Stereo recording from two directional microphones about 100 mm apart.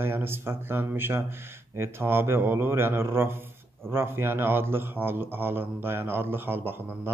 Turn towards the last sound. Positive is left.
turn(degrees=-20)  # may be behind; listen again after turning